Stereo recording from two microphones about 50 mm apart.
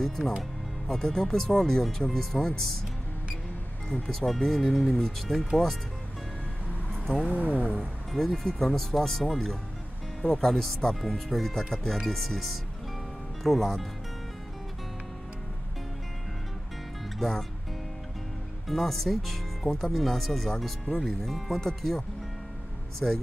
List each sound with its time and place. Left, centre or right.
0.0 s speech: centre
4.1 s speech: centre
6.9 s vehicle: centre
7.2 s speech: right
8.1 s speech: centre
17.2 s speech: centre
18.7 s speech: centre